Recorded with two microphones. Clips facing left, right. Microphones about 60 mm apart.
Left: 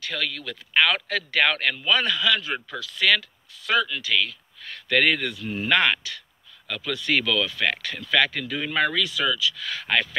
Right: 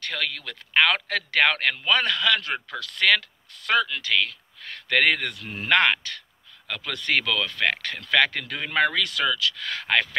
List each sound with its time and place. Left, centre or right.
0.0 s speech: right
1.4 s speech: right
5.3 s speech: centre
5.7 s speech: right
8.0 s speech: right